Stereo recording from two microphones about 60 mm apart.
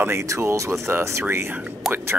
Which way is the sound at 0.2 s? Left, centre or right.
Right.